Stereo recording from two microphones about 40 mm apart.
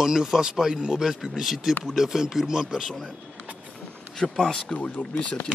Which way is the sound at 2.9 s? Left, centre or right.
Centre.